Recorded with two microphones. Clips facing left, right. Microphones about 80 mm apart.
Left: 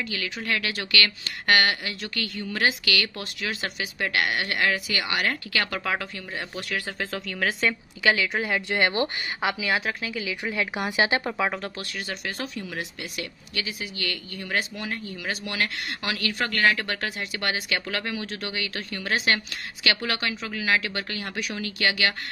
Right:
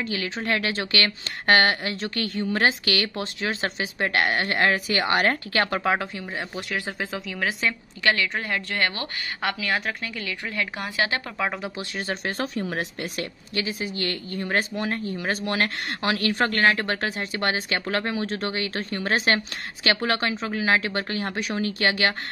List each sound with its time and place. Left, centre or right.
0.0 s speech: right
7.1 s a woman's voice: centre
8.6 s speech: centre
9.7 s a woman's voice: centre
10.4 s speech: centre
11.3 s a woman's voice: centre
11.8 s speech: right